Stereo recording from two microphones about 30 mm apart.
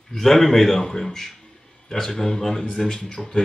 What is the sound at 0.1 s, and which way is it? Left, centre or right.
A man's voice, centre.